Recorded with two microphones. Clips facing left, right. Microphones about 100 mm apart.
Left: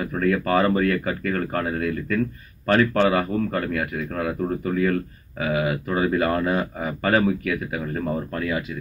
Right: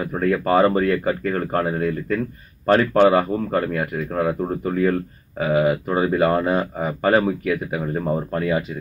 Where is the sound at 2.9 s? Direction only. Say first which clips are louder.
Right 4 dB; 15° right (ahead or behind).